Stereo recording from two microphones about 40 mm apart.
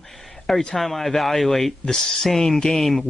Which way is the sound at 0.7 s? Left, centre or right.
Centre.